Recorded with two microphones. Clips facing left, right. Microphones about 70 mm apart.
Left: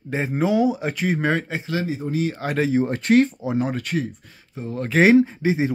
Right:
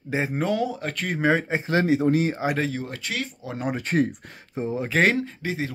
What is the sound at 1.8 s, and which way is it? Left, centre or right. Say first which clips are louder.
Speech: right 6 dB; right.